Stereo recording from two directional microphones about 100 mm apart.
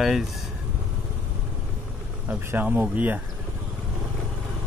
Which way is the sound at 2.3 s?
20° right (ahead or behind).